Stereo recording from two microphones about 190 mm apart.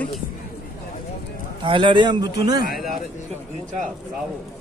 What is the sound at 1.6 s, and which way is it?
Speech, 25° right (ahead or behind).